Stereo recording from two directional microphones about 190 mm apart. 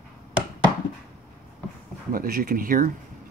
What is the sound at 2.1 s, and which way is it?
Speech, 50° right (ahead or behind).